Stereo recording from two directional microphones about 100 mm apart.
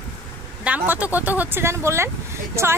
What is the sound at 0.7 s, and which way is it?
Speech, 15° right (ahead or behind).